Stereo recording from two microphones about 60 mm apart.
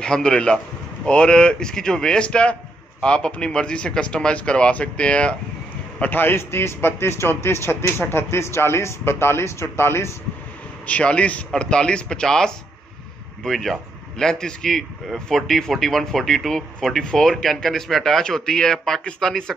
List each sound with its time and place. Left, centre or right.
0.0 s speech: centre
5.9 s speech: left
10.9 s a man's voice: left